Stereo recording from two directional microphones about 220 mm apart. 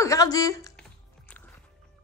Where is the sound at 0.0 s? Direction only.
15° left (ahead or behind).